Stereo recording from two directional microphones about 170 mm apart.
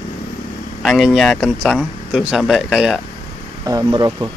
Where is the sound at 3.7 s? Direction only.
20° right (ahead or behind).